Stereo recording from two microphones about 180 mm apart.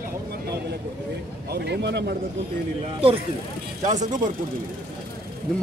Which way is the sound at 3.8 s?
40° right (ahead or behind).